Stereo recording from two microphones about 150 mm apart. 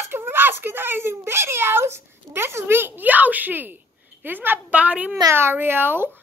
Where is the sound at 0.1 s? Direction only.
15° right (ahead or behind).